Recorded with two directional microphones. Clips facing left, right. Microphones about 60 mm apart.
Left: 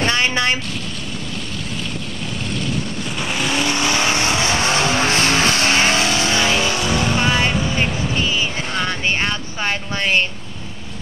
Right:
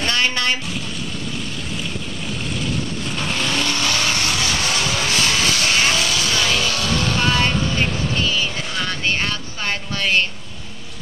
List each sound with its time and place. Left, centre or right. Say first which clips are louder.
0.0 s vehicle: left 2 dB; left
3.2 s vehicle: left 2 dB; centre